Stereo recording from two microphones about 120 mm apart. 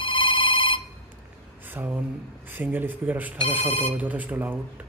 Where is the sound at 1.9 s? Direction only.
10° right (ahead or behind).